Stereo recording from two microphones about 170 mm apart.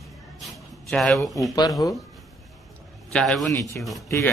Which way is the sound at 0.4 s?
Centre (ahead or behind).